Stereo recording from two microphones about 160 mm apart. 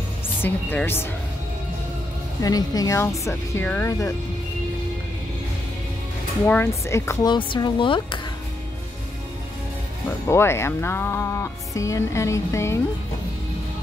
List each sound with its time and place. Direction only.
0.4 s speech: 15° left (ahead or behind)
2.4 s speech: 25° left (ahead or behind)
6.4 s speech: 10° left (ahead or behind)
7.3 s speech: 30° left (ahead or behind)
10.2 s speech: 15° left (ahead or behind)